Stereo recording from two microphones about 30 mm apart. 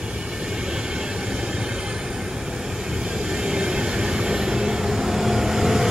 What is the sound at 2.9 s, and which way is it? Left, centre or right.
Vehicle, right.